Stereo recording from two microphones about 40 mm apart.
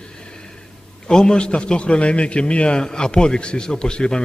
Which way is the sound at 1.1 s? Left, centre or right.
Left.